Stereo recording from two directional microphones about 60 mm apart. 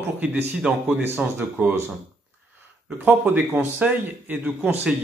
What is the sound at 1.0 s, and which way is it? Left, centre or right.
Speech, right.